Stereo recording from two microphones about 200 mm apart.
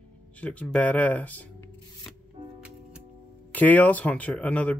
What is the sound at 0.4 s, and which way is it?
Speech, 5° left (ahead or behind).